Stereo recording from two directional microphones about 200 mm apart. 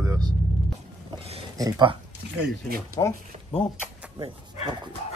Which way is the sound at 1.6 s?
25° right (ahead or behind).